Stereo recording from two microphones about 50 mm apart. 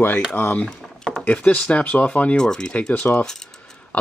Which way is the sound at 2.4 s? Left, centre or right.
Centre.